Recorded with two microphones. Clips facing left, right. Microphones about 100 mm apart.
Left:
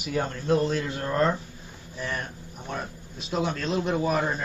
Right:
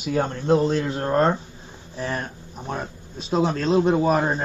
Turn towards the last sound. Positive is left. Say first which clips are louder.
# right 5 dB
turn(degrees=-35)  # may be behind; listen again after turning